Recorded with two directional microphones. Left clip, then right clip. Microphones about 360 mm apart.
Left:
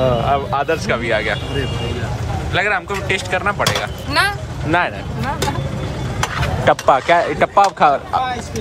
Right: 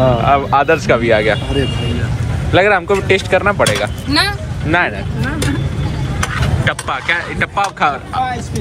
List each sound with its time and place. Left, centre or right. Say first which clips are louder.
0.3 s speech: right 6 dB; centre
2.5 s speech: right 7 dB; centre
6.2 s speech: left 3 dB; centre